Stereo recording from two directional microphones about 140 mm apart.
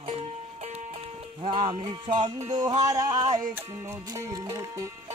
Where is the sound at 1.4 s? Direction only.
45° right (ahead or behind).